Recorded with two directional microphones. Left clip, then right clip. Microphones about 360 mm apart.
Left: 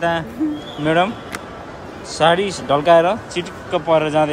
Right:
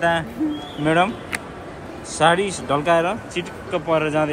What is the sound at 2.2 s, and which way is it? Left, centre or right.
Speech, centre.